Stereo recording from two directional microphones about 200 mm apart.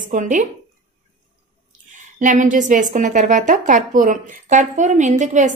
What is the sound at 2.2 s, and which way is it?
A woman's voice, 40° right (ahead or behind).